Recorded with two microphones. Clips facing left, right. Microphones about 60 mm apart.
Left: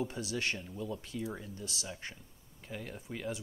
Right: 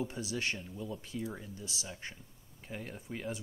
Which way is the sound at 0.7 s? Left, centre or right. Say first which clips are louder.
Left 2 dB; centre.